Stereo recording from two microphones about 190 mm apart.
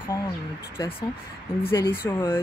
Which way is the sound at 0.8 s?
30° left (ahead or behind).